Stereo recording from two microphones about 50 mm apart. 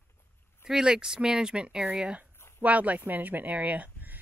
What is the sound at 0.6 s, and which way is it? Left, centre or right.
Speech, centre.